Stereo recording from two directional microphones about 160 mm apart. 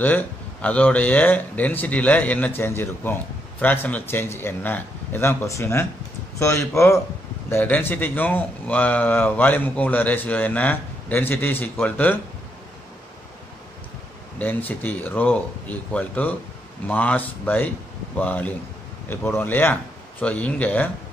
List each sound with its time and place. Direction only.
0.0 s speech: 10° left (ahead or behind)
14.4 s speech: 10° left (ahead or behind)